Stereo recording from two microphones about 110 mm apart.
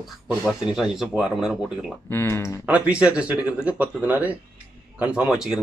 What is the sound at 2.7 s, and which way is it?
Speech, 10° right (ahead or behind).